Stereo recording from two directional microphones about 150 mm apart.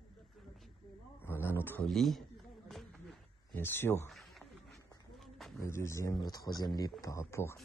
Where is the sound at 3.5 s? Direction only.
15° left (ahead or behind).